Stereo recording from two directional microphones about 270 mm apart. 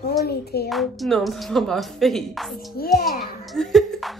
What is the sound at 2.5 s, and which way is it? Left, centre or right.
Speech, left.